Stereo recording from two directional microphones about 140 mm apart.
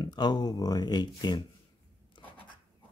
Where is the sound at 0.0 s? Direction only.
30° left (ahead or behind).